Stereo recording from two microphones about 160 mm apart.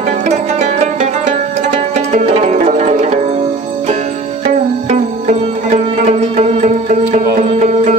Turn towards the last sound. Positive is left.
turn(degrees=-45)  # may be behind; listen again after turning